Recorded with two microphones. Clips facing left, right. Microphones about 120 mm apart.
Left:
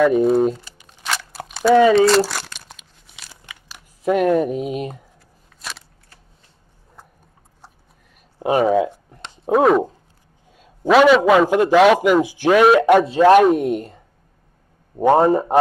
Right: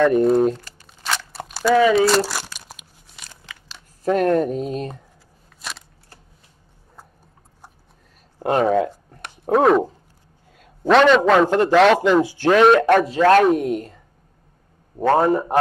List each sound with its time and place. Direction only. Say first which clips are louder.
0.0 s speech: left 1 dB; 5° left (ahead or behind)
1.0 s crunch: even; centre (ahead or behind)
2.0 s speech: left 3 dB; centre (ahead or behind)
2.4 s crumpling: even; 10° right (ahead or behind)
3.2 s crumpling: even; 10° left (ahead or behind)
5.6 s scissors: even; centre (ahead or behind)
8.4 s a man's voice: left 1 dB; 10° left (ahead or behind)
13.6 s a man's voice: left 2 dB; 25° left (ahead or behind)
15.0 s a man's voice: left 3 dB; 20° left (ahead or behind)